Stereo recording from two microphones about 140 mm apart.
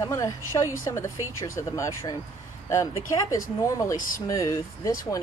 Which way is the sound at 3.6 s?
25° left (ahead or behind).